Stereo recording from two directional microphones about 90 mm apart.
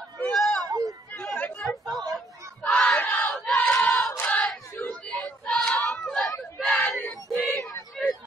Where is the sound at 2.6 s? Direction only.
15° left (ahead or behind).